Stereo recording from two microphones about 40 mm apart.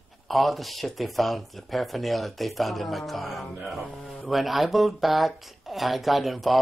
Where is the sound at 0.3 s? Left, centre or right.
Centre.